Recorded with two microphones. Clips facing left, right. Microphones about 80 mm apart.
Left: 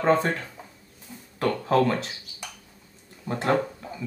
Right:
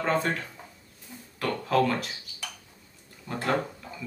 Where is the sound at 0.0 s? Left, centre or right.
Left.